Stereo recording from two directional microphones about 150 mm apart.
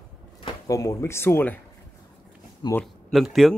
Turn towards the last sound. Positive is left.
turn(degrees=0)  # may be behind; listen again after turning